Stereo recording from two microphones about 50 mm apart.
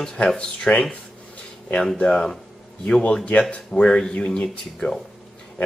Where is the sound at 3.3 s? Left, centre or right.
Left.